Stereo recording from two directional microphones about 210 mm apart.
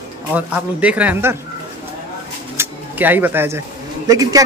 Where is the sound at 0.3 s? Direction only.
5° right (ahead or behind).